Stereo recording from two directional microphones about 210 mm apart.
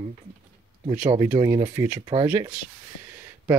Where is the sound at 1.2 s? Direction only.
15° right (ahead or behind).